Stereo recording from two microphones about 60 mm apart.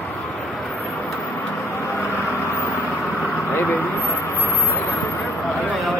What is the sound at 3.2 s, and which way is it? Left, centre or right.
Vehicle, left.